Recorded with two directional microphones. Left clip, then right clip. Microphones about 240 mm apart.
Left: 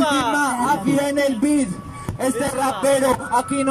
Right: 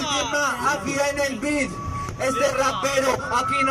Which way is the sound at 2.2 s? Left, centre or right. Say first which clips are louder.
Even; left.